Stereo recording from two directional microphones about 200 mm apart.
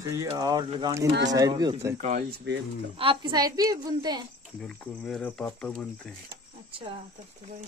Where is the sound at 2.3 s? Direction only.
55° right (ahead or behind).